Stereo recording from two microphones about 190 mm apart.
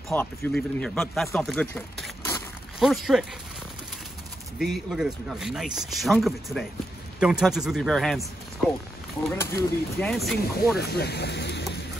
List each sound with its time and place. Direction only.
0.1 s speech: 10° left (ahead or behind)
2.8 s speech: centre (ahead or behind)
4.6 s speech: centre (ahead or behind)
9.4 s speech: 15° left (ahead or behind)
10.8 s speech: 60° left (ahead or behind)